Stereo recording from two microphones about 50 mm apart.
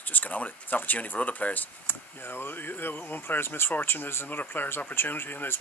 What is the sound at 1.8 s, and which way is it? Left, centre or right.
Speech, left.